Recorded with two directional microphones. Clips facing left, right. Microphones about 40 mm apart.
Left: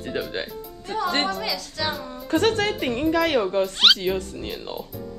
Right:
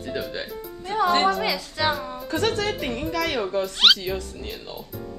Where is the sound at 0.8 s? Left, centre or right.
Right.